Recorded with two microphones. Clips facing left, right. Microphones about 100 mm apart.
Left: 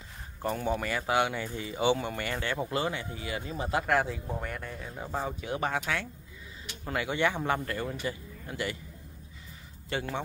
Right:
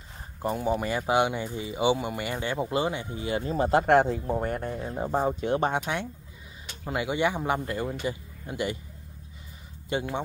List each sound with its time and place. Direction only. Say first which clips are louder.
0.4 s speech: right 3 dB; 15° right (ahead or behind)
3.4 s speech: right 8 dB; 40° right (ahead or behind); by 8.7 s 20° right (ahead or behind)
9.8 s speech: right 4 dB; 20° right (ahead or behind)